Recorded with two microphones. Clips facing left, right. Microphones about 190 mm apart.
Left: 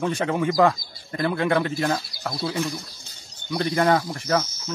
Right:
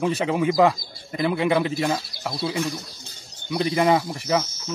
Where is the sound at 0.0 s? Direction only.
5° right (ahead or behind).